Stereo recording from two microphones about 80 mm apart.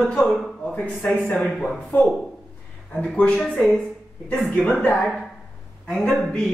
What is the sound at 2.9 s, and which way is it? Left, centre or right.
Speech, centre.